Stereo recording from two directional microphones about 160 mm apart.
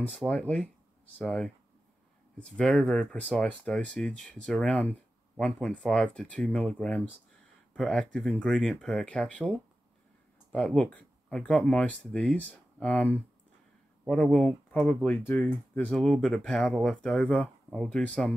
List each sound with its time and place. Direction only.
0.2 s speech: 5° left (ahead or behind)
10.5 s speech: 5° left (ahead or behind)